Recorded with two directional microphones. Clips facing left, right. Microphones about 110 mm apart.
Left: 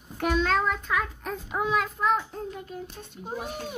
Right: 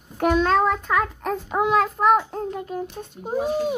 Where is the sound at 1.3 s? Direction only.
75° right (ahead or behind); by 3.0 s 50° right (ahead or behind).